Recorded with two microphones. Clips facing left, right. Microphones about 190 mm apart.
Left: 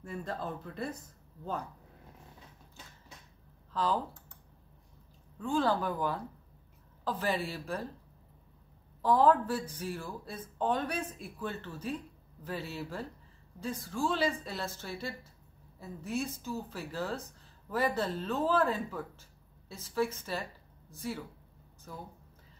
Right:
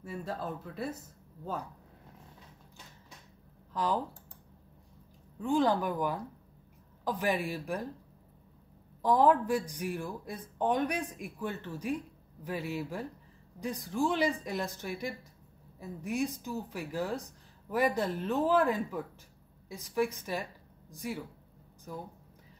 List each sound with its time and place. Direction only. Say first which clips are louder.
0.0 s speech: right 1 dB; 5° right (ahead or behind)
3.7 s speech: even; 15° right (ahead or behind)
5.4 s speech: right 2 dB; 15° right (ahead or behind)
9.0 s speech: even; 15° right (ahead or behind)